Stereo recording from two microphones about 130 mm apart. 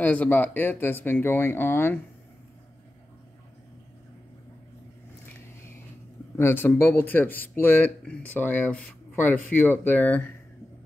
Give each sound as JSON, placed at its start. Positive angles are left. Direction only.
{"t": 0.0, "sound": "speech", "side_deg": 10}
{"t": 6.3, "sound": "speech", "side_deg": 15}